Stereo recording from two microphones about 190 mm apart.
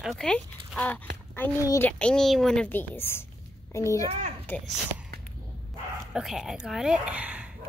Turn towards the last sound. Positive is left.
turn(degrees=-5)  # may be behind; listen again after turning